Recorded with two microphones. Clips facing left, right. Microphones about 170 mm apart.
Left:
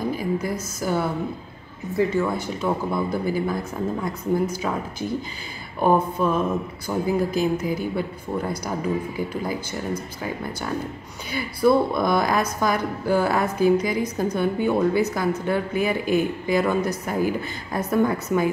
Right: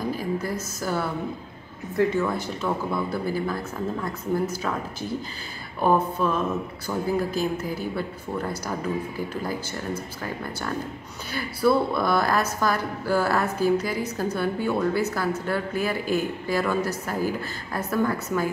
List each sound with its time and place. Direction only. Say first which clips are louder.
0.2 s a sound: left 2 dB; 15° left (ahead or behind)
2.0 s a woman's voice: left 1 dB; 10° left (ahead or behind)
5.8 s a woman's voice: left 2 dB; 15° left (ahead or behind)
11.3 s a woman's voice: left 3 dB; 15° left (ahead or behind)